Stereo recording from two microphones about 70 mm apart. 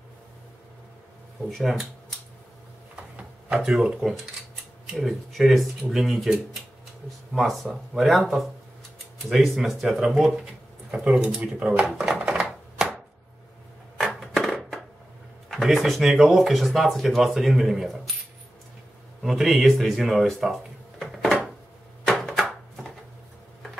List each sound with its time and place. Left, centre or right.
1.5 s speech: centre
3.0 s wood: centre
3.5 s speech: centre
11.3 s speech: centre
12.2 s typewriter: centre
14.2 s a sound: centre
15.7 s speech: centre
19.2 s speech: centre
22.0 s a sound: centre